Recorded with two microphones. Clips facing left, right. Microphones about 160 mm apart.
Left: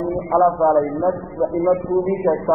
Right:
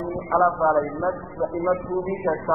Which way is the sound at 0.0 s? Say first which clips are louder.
Left 5 dB; 30° left (ahead or behind).